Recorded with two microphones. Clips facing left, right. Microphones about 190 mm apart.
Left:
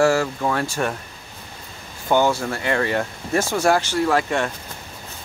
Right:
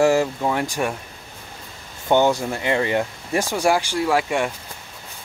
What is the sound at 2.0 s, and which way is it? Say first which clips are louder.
Speech: right 1 dB; 20° right (ahead or behind).